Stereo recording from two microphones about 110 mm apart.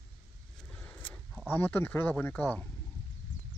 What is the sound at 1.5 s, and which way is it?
Speech, 20° left (ahead or behind).